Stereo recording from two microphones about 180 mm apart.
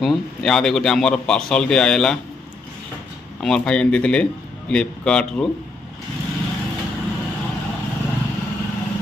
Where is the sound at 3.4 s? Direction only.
5° left (ahead or behind).